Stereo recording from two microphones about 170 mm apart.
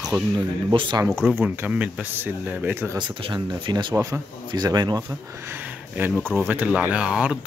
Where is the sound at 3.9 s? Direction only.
15° right (ahead or behind).